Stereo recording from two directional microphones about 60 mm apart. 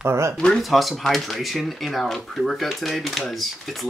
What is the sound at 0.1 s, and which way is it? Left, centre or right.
Speech, right.